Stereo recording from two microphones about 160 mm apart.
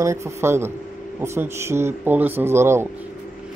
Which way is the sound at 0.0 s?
20° right (ahead or behind).